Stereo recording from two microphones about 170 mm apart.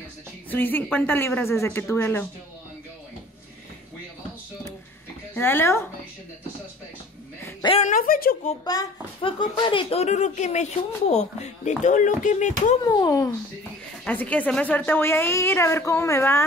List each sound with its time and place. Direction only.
0.5 s a woman's voice: 10° left (ahead or behind)
5.3 s a woman's voice: 15° left (ahead or behind)
7.8 s speech: 55° left (ahead or behind)
8.6 s a child's voice: 25° left (ahead or behind); by 12.7 s 45° left (ahead or behind)
12.8 s speech: 20° left (ahead or behind)
14.0 s a woman's voice: 10° left (ahead or behind)